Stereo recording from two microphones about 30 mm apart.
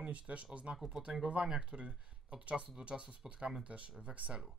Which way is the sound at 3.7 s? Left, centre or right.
Right.